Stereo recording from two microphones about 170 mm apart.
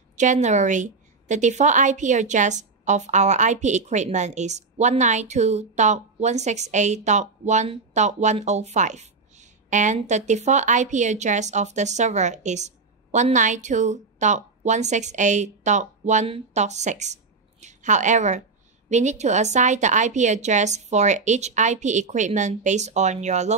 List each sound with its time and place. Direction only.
0.2 s a woman's voice: 45° right (ahead or behind)